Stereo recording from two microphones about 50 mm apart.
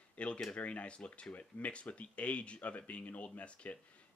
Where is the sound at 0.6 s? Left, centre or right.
Left.